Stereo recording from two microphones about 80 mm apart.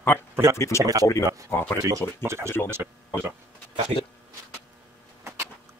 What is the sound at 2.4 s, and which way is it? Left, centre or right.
Speech, left.